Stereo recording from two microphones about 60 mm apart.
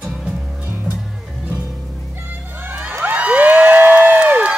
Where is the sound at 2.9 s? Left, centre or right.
Right.